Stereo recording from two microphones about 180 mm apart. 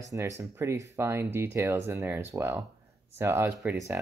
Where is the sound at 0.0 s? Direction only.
15° right (ahead or behind).